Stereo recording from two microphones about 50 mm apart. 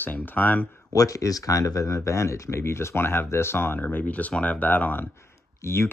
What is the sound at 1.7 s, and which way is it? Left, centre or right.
Speech, left.